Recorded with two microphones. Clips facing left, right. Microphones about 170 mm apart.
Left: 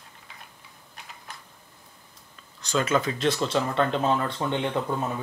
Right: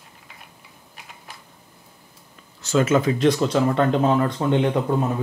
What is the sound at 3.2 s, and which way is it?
Speech, 15° right (ahead or behind).